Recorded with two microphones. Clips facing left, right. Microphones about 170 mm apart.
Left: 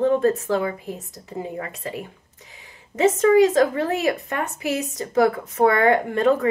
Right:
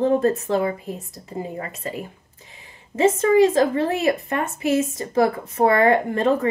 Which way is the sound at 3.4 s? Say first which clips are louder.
Even; 30° right (ahead or behind).